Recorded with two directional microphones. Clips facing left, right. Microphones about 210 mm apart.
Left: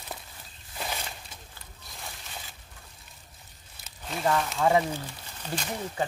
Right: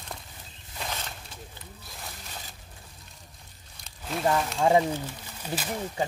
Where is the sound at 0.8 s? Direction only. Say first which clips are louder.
Left 1 dB; 10° left (ahead or behind).